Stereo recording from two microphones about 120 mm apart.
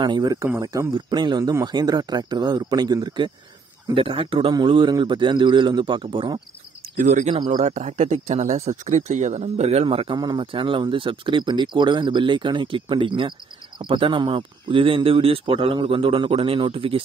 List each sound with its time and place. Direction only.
0.0 s speech: 35° right (ahead or behind)
3.9 s speech: 50° right (ahead or behind)
7.0 s speech: 90° right
7.3 s speech: 40° right (ahead or behind)
7.6 s speech: 80° right; by 17.0 s 50° right (ahead or behind)